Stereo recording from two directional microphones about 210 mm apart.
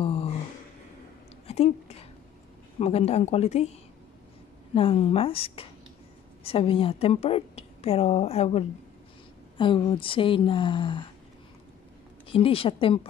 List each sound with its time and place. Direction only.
0.0 s a sound: 25° left (ahead or behind)
1.5 s speech: 30° left (ahead or behind)
4.7 s a woman's voice: 25° left (ahead or behind)
12.3 s a woman's voice: 25° left (ahead or behind)